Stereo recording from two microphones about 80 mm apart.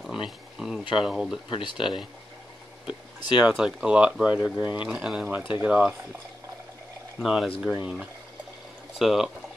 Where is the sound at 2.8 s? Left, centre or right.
Left.